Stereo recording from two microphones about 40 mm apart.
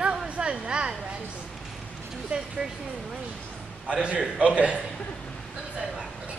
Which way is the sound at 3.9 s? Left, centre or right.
Right.